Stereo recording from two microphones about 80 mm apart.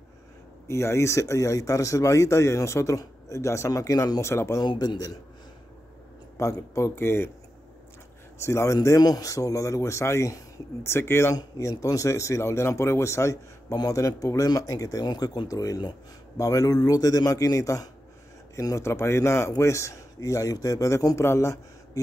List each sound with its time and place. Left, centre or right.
0.7 s speech: left
4.6 s a man's voice: left
6.3 s speech: left
8.4 s speech: left
9.0 s speech: left
11.3 s speech: left
15.0 s speech: left
18.9 s speech: left
21.2 s speech: left